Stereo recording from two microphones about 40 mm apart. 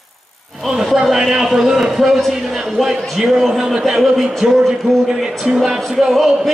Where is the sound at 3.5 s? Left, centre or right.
Centre.